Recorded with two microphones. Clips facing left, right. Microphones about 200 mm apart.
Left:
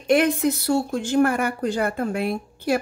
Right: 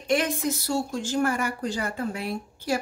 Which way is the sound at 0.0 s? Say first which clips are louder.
Left 6 dB; 60° left (ahead or behind).